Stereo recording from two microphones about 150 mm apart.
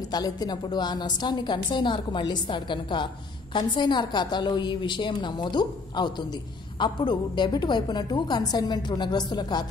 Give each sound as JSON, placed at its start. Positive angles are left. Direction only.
{"t": 0.0, "sound": "a woman's voice", "side_deg": 25}